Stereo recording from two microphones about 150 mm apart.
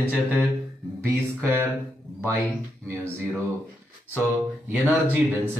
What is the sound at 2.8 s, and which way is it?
Mantra, 5° left (ahead or behind).